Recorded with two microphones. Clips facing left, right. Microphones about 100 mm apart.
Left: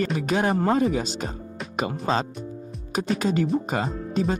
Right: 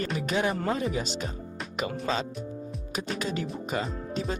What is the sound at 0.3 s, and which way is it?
Speech, 40° left (ahead or behind).